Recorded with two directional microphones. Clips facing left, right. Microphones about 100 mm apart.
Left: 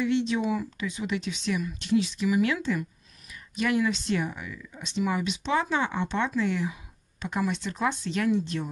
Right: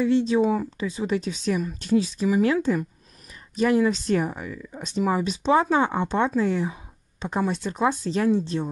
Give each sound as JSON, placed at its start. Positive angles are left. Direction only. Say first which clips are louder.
{"t": 0.0, "sound": "speech", "louder": "right 6 dB", "side_deg": -35}